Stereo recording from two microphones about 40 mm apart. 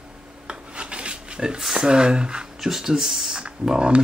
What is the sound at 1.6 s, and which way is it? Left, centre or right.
Speech, centre.